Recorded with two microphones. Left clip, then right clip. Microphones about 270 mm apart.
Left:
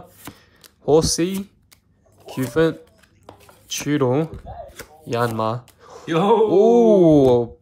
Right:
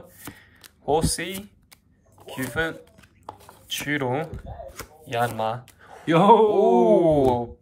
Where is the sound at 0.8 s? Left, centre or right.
Centre.